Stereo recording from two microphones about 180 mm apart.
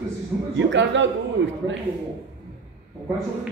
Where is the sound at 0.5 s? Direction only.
90° right.